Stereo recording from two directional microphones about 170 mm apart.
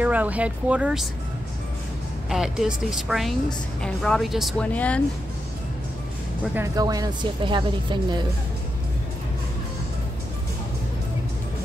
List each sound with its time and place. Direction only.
0.0 s speech: 10° right (ahead or behind)
2.2 s a woman's voice: 5° right (ahead or behind)
6.5 s speech: 20° right (ahead or behind)